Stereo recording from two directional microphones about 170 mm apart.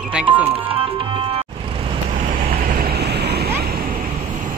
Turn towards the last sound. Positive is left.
turn(degrees=-70)  # may be behind; listen again after turning